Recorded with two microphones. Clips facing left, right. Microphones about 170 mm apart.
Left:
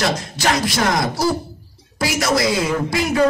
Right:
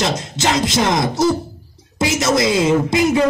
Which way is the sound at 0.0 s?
25° right (ahead or behind).